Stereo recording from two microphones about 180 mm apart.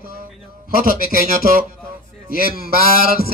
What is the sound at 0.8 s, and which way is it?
Speech, 50° right (ahead or behind).